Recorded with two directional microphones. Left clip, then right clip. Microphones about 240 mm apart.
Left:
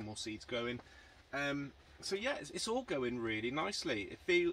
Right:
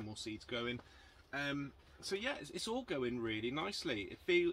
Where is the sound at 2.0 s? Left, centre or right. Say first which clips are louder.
Left 2 dB; centre.